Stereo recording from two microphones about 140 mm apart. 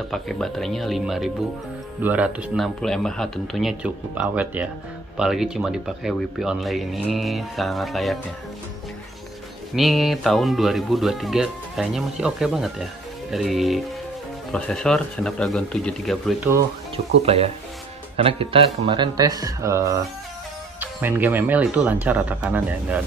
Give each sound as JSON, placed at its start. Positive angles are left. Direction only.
{"t": 0.1, "sound": "speech", "side_deg": 0}
{"t": 9.8, "sound": "speech", "side_deg": 0}
{"t": 16.9, "sound": "speech", "side_deg": -45}
{"t": 18.9, "sound": "speech", "side_deg": -30}